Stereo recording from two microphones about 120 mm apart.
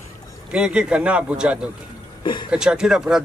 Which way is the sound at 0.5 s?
10° right (ahead or behind).